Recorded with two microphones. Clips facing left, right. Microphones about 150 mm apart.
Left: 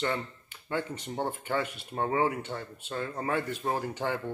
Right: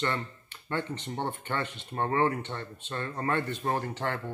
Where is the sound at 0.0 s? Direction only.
5° left (ahead or behind).